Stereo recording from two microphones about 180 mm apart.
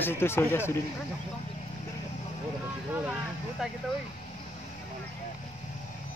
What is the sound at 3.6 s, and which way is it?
Speech, 5° right (ahead or behind).